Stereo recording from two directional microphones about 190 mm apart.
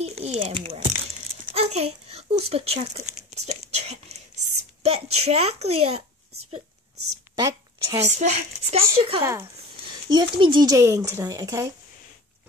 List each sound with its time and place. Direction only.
0.0 s a child's voice: 35° right (ahead or behind)
7.3 s a sound: 15° right (ahead or behind)
8.2 s a woman's voice: 35° right (ahead or behind)
9.2 s speech: 15° right (ahead or behind)
10.0 s speech: 25° right (ahead or behind)